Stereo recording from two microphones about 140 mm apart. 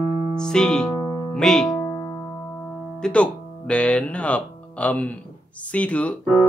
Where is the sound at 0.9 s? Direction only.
25° left (ahead or behind).